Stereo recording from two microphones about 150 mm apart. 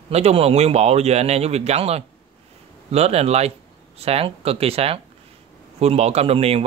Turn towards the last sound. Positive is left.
turn(degrees=-40)  # may be behind; listen again after turning